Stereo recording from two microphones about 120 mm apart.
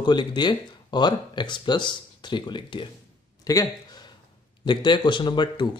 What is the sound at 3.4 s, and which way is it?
Speech, 30° left (ahead or behind).